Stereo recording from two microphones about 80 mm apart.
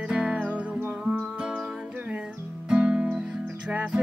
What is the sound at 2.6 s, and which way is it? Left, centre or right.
Music, centre.